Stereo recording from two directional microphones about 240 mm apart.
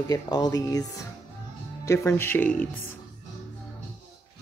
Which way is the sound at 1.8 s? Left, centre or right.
Centre.